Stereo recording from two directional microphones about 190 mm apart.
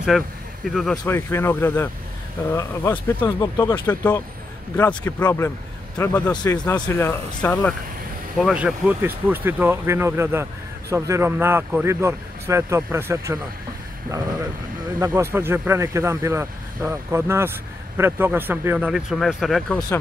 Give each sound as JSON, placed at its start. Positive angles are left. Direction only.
{"t": 0.1, "sound": "speech", "side_deg": 0}
{"t": 1.0, "sound": "speech", "side_deg": 10}
{"t": 3.7, "sound": "speech", "side_deg": 10}
{"t": 8.4, "sound": "speech", "side_deg": 0}
{"t": 15.0, "sound": "speech", "side_deg": -10}